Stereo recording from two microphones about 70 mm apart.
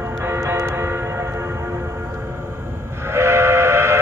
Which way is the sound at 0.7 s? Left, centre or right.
Right.